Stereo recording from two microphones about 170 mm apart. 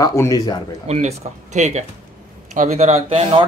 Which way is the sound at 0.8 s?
40° right (ahead or behind).